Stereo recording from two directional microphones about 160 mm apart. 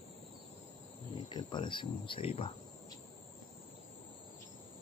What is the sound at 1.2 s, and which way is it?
Speech, 30° left (ahead or behind).